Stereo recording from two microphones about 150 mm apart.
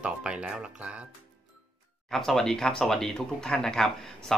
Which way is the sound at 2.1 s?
Centre (ahead or behind).